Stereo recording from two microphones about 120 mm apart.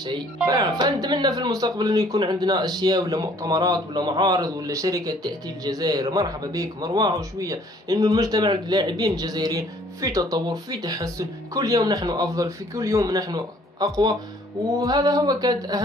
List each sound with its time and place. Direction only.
0.0 s speech: 35° right (ahead or behind)